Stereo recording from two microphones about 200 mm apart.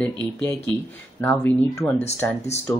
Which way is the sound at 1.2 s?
10° left (ahead or behind).